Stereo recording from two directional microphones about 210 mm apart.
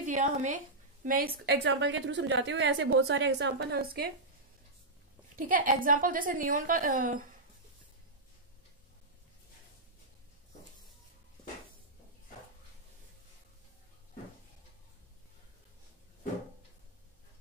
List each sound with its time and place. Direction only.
0.0 s a woman's voice: 35° right (ahead or behind)
5.3 s a woman's voice: 40° right (ahead or behind)